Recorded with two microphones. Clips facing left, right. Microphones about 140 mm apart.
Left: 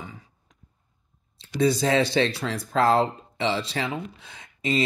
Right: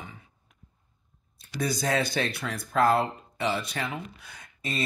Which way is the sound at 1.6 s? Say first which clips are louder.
Left 6 dB; 25° left (ahead or behind).